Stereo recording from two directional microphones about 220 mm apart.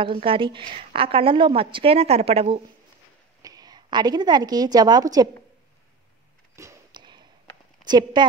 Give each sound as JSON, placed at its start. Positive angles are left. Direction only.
{"t": 0.0, "sound": "a woman's voice", "side_deg": -25}
{"t": 6.5, "sound": "a sound", "side_deg": -15}
{"t": 7.8, "sound": "a woman's voice", "side_deg": -20}